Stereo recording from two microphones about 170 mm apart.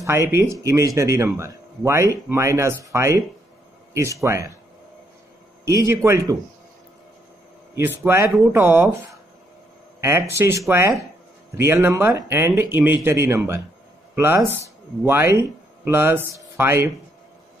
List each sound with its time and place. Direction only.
0.0 s speech: 15° right (ahead or behind)
5.7 s speech: 15° right (ahead or behind)
7.7 s speech: 10° right (ahead or behind)
9.9 s speech: 15° right (ahead or behind)